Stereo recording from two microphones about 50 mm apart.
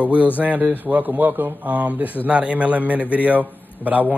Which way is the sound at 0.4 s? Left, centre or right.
Right.